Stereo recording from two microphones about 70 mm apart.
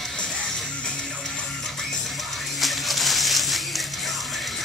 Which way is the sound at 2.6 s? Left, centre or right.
Centre.